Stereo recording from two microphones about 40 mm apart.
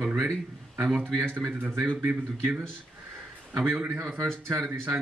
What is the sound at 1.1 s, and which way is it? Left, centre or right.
A woman's voice, right.